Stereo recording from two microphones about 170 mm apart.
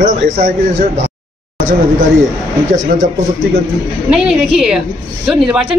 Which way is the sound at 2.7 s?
50° right (ahead or behind).